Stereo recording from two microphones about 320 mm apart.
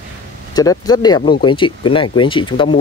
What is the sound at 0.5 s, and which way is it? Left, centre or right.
Speech, centre.